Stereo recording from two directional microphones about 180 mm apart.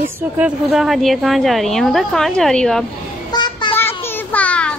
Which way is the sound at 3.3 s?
25° left (ahead or behind).